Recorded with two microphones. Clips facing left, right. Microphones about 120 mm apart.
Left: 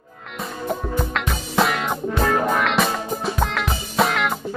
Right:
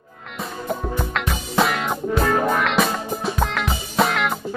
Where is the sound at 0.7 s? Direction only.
Centre (ahead or behind).